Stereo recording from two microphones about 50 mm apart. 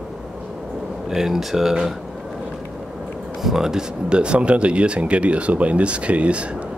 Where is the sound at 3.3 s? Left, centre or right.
Centre; by 6.7 s right.